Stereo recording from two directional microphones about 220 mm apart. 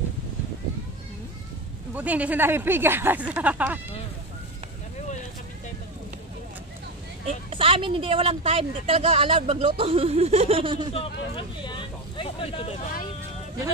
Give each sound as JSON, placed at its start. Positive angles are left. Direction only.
{"t": 2.0, "sound": "speech", "side_deg": -5}
{"t": 7.2, "sound": "speech", "side_deg": -25}
{"t": 10.9, "sound": "speech", "side_deg": 25}